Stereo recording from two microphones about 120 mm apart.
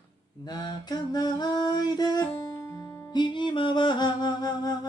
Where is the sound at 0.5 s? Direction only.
35° left (ahead or behind).